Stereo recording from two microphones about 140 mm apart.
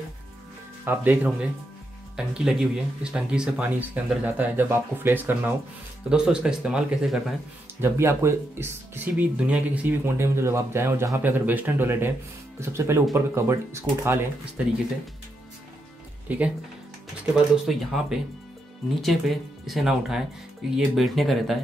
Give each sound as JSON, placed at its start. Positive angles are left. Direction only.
{"t": 0.8, "sound": "speech", "side_deg": -15}
{"t": 7.8, "sound": "speech", "side_deg": -20}
{"t": 16.3, "sound": "speech", "side_deg": -10}